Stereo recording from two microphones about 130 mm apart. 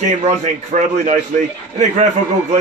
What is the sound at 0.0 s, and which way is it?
Speech, 60° right (ahead or behind).